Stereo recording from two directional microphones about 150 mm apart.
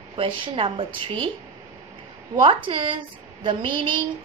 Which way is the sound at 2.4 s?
35° right (ahead or behind).